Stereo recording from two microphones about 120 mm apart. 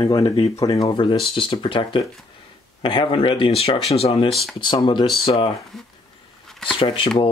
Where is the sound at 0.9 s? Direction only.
45° left (ahead or behind).